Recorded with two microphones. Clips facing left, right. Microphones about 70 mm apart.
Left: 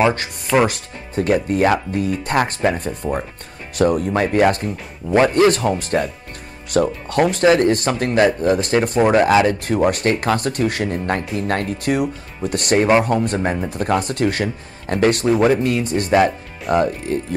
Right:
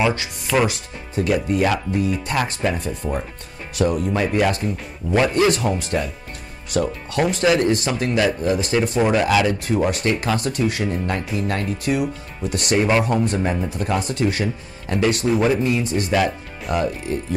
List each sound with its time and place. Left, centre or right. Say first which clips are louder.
0.7 s speech: left 1 dB; left
16.1 s speech: left 6 dB; left
16.7 s speech: left 4 dB; left